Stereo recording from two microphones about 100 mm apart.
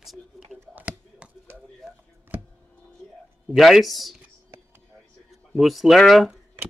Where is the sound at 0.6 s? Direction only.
15° right (ahead or behind).